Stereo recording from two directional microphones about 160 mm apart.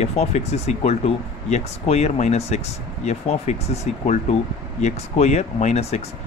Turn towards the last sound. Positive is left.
turn(degrees=40)  # may be behind; listen again after turning